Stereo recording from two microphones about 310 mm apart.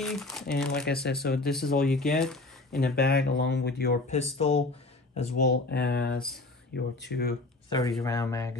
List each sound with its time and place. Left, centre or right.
0.0 s speech: centre
0.8 s speech: left
1.9 s speech: centre
3.0 s speech: left
8.0 s speech: centre